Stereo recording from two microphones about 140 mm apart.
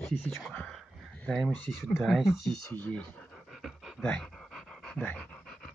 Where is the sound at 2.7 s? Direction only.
10° left (ahead or behind).